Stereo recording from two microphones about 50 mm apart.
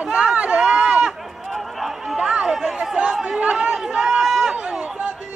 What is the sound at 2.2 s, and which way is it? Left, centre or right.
Chatter, centre.